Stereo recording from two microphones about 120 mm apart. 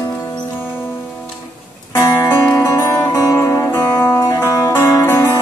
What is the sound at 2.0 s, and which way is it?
Music, 25° left (ahead or behind).